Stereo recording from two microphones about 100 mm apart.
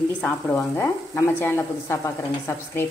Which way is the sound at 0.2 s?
25° left (ahead or behind).